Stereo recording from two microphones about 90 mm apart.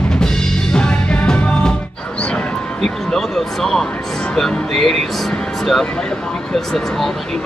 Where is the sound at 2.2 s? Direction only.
10° left (ahead or behind).